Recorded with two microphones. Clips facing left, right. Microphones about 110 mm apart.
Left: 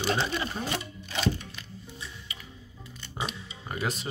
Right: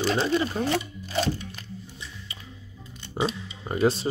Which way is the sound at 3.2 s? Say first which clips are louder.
Right 8 dB; 30° right (ahead or behind).